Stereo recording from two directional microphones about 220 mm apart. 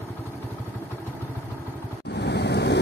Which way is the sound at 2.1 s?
50° left (ahead or behind).